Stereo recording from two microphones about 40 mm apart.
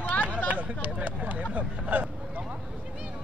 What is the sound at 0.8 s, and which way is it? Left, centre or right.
Vehicle, right.